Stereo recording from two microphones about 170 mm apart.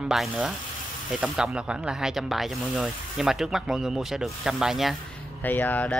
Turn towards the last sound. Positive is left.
turn(degrees=10)  # may be behind; listen again after turning